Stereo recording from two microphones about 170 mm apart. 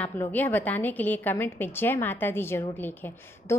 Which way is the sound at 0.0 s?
10° left (ahead or behind).